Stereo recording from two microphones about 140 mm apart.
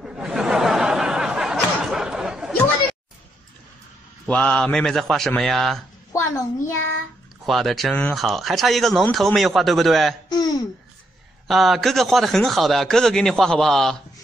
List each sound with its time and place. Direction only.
0.0 s a sound: 5° right (ahead or behind)
4.3 s speech: 10° left (ahead or behind)
6.1 s a child's voice: 15° left (ahead or behind)
7.4 s speech: centre (ahead or behind)
11.4 s speech: centre (ahead or behind)